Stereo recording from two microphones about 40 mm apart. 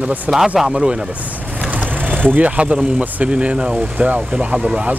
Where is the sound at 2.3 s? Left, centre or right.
Right.